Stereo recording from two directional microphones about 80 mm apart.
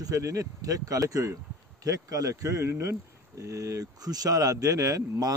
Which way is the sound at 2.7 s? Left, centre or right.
Right.